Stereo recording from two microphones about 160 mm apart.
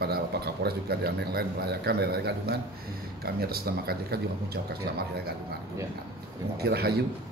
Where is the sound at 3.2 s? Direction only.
75° right (ahead or behind).